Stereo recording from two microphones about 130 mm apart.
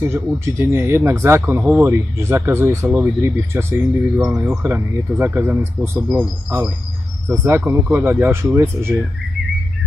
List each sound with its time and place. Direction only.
0.0 s speech: 20° right (ahead or behind)
4.2 s speech: 5° right (ahead or behind)
4.5 s speech: 20° right (ahead or behind)